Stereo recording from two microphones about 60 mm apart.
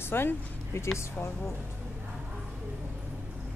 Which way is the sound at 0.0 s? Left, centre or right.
Left.